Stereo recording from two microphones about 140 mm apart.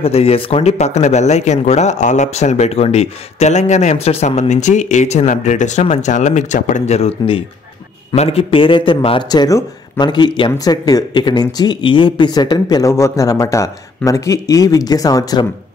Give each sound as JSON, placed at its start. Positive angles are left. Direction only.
{"t": 0.0, "sound": "a man's voice", "side_deg": 45}